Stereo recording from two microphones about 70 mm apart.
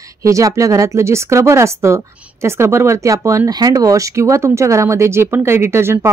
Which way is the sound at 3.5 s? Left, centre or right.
Right.